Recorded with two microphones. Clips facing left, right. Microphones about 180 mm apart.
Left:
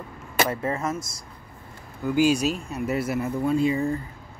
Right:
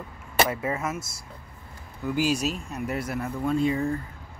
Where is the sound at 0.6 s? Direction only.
10° right (ahead or behind).